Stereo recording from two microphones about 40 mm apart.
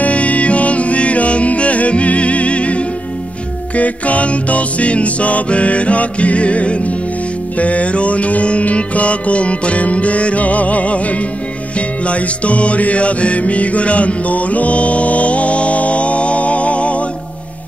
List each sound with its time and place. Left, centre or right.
0.0 s music: left